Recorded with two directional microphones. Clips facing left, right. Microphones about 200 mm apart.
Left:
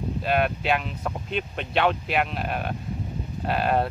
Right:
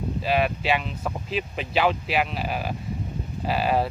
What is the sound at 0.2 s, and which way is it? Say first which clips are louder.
Speech: even; centre (ahead or behind).